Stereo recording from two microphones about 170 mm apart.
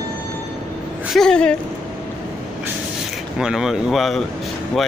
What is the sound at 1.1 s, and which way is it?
Speech, 5° left (ahead or behind).